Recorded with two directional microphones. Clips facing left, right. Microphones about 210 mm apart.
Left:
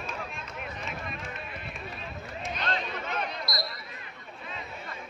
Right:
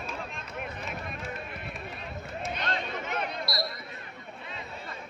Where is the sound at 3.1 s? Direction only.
25° right (ahead or behind).